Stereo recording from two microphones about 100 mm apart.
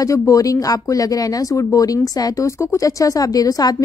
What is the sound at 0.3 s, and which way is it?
Speech, 35° left (ahead or behind).